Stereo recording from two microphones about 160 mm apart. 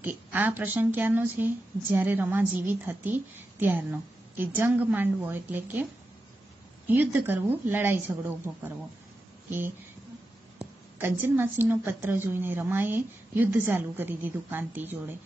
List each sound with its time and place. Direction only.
0.0 s a woman's voice: 10° right (ahead or behind)
6.9 s a woman's voice: 10° right (ahead or behind)
11.0 s a woman's voice: 15° right (ahead or behind)